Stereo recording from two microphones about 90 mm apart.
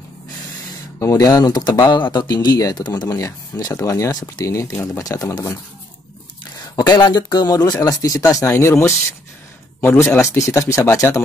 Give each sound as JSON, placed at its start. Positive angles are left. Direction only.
{"t": 0.9, "sound": "speech", "side_deg": 40}
{"t": 6.7, "sound": "speech", "side_deg": 50}
{"t": 8.5, "sound": "speech", "side_deg": 30}
{"t": 10.3, "sound": "speech", "side_deg": 35}